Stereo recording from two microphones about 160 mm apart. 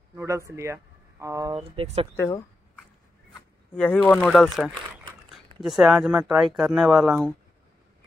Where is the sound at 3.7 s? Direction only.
10° left (ahead or behind).